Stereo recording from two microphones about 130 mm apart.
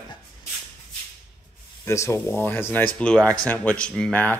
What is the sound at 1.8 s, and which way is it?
Speech, 20° left (ahead or behind).